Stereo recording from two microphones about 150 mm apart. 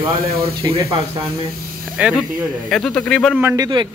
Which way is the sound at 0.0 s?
20° right (ahead or behind).